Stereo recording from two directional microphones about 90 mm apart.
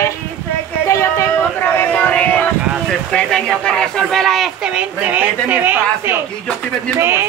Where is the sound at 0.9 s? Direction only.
35° left (ahead or behind).